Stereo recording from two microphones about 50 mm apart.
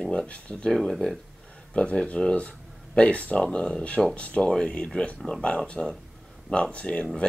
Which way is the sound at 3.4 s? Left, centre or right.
Centre.